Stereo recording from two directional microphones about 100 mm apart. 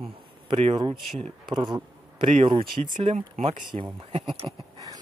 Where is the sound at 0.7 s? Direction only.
50° right (ahead or behind); by 4.2 s 90° right.